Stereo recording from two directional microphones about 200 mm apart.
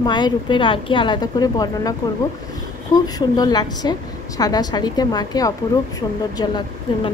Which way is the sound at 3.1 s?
20° left (ahead or behind).